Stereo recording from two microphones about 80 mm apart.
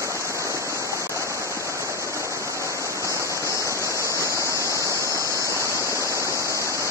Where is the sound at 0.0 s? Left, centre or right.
Right.